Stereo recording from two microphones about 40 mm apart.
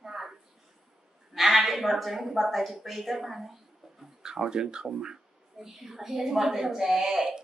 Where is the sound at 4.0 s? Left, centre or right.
Centre.